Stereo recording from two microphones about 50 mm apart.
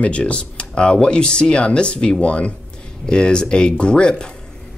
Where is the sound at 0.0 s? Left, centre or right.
Left.